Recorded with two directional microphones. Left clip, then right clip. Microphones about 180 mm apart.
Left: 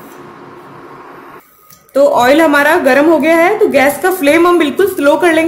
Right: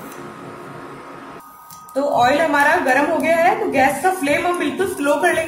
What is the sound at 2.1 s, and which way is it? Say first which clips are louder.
Speech: left 2 dB; 55° left (ahead or behind).